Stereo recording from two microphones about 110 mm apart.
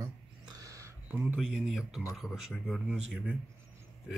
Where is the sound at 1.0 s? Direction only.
15° right (ahead or behind).